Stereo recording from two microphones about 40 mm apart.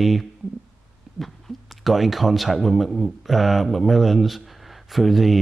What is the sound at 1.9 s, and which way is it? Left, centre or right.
Speech, centre.